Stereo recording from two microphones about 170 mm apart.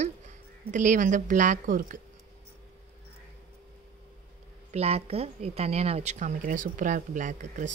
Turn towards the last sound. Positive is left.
turn(degrees=-45)  # may be behind; listen again after turning